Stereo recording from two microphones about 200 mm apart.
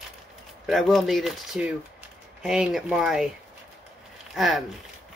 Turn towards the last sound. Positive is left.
turn(degrees=0)  # may be behind; listen again after turning